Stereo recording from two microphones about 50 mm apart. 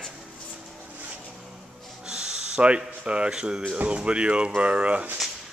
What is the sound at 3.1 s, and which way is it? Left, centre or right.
A man's voice, centre.